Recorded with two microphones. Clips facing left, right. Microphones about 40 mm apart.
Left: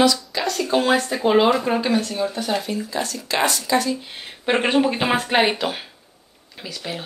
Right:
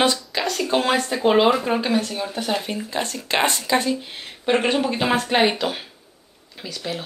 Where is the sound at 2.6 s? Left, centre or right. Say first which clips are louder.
Left 1 dB; right.